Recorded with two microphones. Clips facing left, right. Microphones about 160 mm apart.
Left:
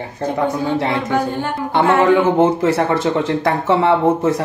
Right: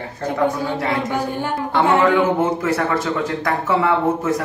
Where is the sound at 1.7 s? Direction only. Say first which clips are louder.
Left 3 dB; 20° left (ahead or behind).